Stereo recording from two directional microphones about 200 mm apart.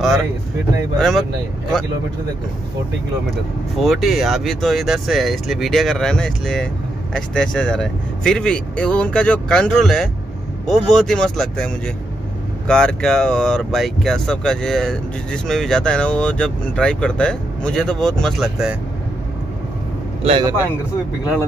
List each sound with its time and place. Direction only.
0.9 s speech: centre (ahead or behind)
3.8 s speech: centre (ahead or behind)
20.2 s a man's voice: 25° right (ahead or behind)